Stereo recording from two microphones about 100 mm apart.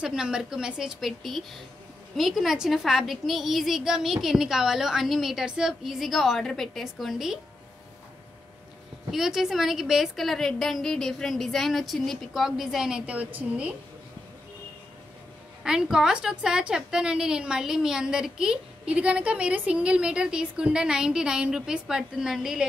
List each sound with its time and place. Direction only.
0.0 s a woman's voice: 5° right (ahead or behind)
9.1 s a woman's voice: 5° right (ahead or behind)
15.6 s a woman's voice: 5° right (ahead or behind)